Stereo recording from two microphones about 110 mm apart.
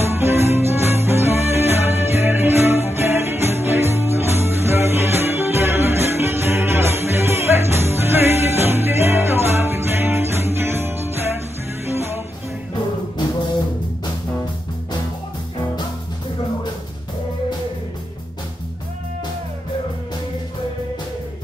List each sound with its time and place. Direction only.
0.0 s music: 25° right (ahead or behind)